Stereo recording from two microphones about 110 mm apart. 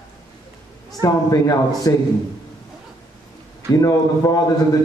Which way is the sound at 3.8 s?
30° left (ahead or behind).